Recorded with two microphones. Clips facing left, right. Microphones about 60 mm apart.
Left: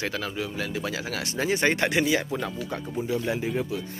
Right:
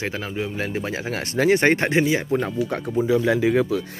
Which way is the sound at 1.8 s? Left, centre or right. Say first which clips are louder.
Right 3 dB; right.